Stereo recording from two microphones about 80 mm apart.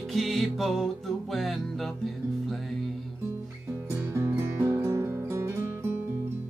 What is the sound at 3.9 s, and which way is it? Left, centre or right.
Music, right.